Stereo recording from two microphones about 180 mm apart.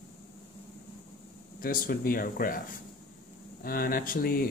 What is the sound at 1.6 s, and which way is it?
Speech, 55° left (ahead or behind).